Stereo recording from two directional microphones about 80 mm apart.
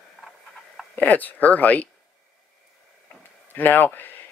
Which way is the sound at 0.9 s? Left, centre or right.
Left.